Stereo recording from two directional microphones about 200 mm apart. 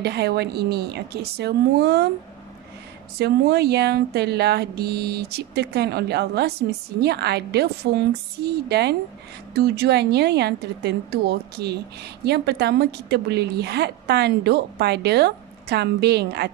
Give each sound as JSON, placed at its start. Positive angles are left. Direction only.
{"t": 0.0, "sound": "a woman's voice", "side_deg": -55}
{"t": 3.2, "sound": "a woman's voice", "side_deg": -55}